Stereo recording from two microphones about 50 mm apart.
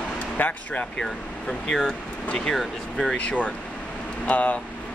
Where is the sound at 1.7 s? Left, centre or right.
Centre.